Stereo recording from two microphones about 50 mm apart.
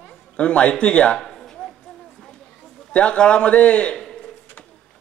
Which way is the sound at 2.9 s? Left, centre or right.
Left.